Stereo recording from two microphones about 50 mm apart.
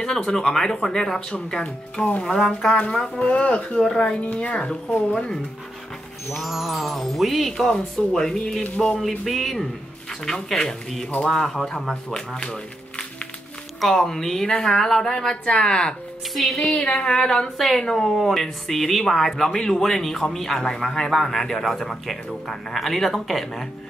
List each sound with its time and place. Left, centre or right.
0.0 s speech: centre
1.3 s speech: left
2.2 s speech: centre; by 3.6 s left
3.7 s speech: centre
6.3 s speech: centre
13.7 s speech: centre
16.3 s speech: centre
16.7 s speech: left
17.0 s speech: centre